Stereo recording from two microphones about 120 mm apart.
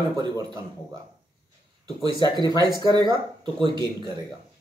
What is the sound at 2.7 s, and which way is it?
Speech, 35° right (ahead or behind).